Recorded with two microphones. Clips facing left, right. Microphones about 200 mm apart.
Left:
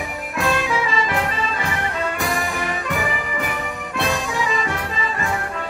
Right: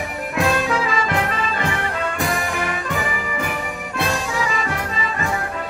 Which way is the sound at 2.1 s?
Centre (ahead or behind).